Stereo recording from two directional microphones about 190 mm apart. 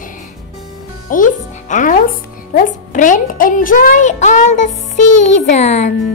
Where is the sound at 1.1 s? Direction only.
45° left (ahead or behind).